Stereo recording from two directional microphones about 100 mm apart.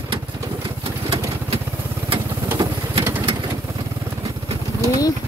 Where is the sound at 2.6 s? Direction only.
55° right (ahead or behind).